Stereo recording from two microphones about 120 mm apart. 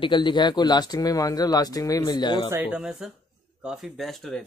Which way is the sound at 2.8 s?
5° right (ahead or behind).